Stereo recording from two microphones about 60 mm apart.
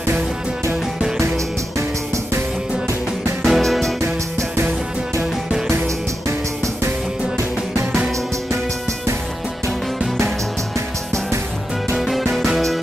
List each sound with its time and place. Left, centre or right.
3.4 s music: centre
4.0 s music: right
12.0 s music: centre